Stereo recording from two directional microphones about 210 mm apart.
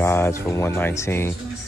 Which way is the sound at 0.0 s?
10° left (ahead or behind).